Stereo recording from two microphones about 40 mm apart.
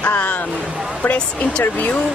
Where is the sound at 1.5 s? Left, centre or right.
Left.